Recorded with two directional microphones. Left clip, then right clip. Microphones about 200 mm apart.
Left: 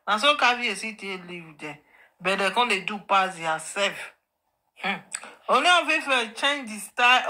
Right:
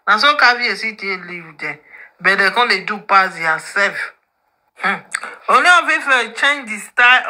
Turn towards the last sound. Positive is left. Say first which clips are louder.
# right 8 dB
turn(degrees=-40)  # may be behind; listen again after turning